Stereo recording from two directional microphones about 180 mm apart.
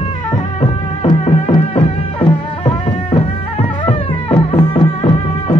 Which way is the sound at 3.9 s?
30° left (ahead or behind).